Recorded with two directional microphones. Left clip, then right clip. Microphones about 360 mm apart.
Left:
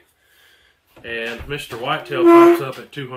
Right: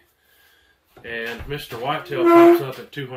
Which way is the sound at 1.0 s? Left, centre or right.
Centre.